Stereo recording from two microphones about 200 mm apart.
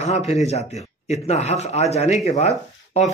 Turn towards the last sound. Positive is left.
turn(degrees=35)  # may be behind; listen again after turning